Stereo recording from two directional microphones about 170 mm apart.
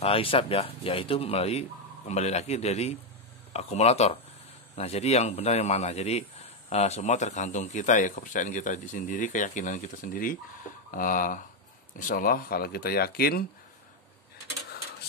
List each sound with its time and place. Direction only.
0.0 s speech: 35° left (ahead or behind); by 13.5 s 65° left (ahead or behind)